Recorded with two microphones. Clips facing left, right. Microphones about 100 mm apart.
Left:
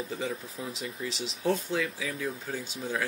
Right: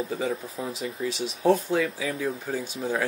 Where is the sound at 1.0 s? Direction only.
50° right (ahead or behind).